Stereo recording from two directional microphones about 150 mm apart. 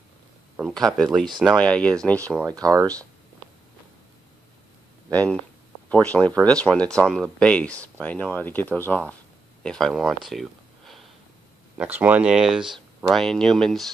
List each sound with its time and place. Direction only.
0.6 s speech: centre (ahead or behind)
2.4 s speech: 25° right (ahead or behind)
5.1 s speech: 10° left (ahead or behind)
10.2 s a sound: centre (ahead or behind)
11.7 s speech: 10° right (ahead or behind)